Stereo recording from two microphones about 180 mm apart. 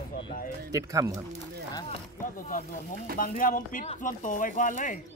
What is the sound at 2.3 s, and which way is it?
Speech, 50° left (ahead or behind).